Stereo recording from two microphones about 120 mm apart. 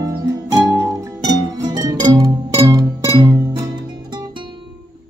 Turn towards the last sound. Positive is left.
turn(degrees=-25)  # may be behind; listen again after turning